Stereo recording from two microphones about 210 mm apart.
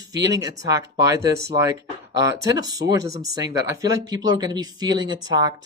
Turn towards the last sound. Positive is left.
turn(degrees=-20)  # may be behind; listen again after turning